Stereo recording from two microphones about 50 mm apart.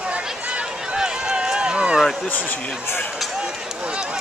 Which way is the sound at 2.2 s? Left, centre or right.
Left.